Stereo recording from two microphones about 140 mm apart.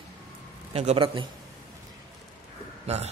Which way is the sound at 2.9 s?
50° right (ahead or behind).